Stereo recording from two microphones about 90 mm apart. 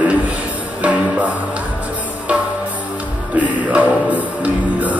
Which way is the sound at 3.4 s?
15° right (ahead or behind).